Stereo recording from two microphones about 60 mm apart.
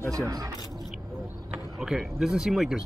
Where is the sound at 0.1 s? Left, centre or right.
Right.